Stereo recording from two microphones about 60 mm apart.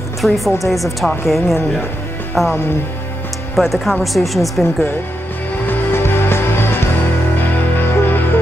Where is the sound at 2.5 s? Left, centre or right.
Left.